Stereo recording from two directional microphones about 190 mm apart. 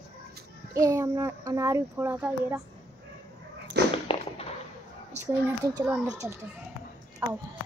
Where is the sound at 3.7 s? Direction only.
60° right (ahead or behind).